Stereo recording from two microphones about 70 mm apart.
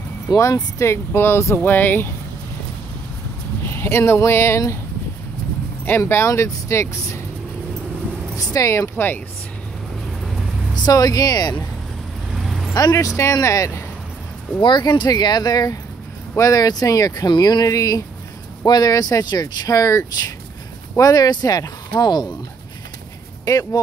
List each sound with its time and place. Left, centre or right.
0.4 s speech: left
3.6 s speech: left
5.9 s speech: left
8.5 s speech: left
10.7 s speech: left
12.4 s vehicle: centre
12.9 s speech: left
14.7 s speech: left
19.8 s speech: left
21.0 s speech: left
23.4 s speech: left